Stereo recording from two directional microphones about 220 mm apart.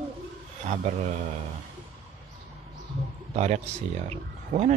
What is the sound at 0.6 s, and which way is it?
Speech, 30° right (ahead or behind).